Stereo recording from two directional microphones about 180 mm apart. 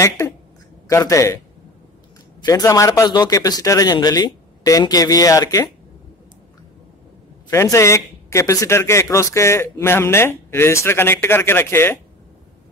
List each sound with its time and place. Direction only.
0.8 s speech: 15° left (ahead or behind)
2.4 s a man's voice: 20° left (ahead or behind)
7.4 s speech: 15° left (ahead or behind)